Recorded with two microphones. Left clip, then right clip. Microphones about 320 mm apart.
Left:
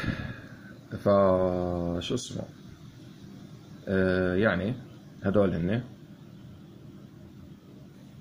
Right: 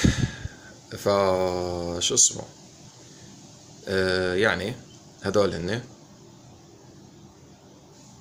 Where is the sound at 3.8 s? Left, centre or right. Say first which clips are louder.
Right 3 dB; centre.